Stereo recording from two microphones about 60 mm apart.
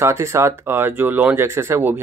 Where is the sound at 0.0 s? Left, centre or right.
Right.